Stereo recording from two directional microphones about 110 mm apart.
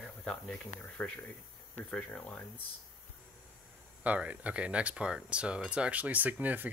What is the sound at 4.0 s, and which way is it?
Speech, 15° right (ahead or behind).